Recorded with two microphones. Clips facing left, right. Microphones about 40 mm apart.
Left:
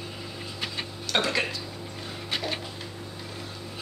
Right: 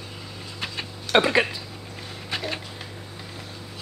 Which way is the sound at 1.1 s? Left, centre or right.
Right.